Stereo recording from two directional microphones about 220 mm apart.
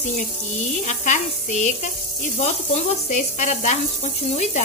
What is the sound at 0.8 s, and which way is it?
Sizzle, 35° left (ahead or behind).